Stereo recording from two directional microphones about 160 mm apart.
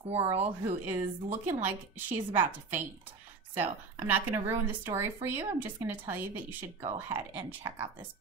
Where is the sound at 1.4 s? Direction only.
15° right (ahead or behind).